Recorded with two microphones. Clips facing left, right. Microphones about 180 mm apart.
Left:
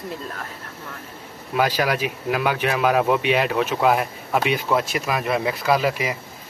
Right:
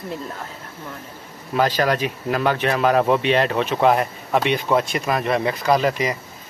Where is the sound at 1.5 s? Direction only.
10° left (ahead or behind).